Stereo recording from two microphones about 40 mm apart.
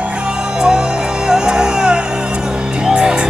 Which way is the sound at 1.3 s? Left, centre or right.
Centre.